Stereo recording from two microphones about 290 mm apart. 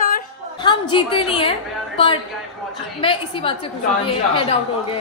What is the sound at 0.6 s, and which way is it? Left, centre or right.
Speech, centre.